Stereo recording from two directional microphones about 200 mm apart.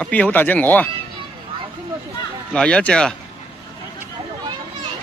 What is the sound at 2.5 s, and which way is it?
Speech, 5° left (ahead or behind).